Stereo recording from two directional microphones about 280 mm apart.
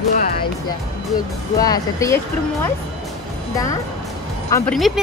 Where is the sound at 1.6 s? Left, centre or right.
Centre.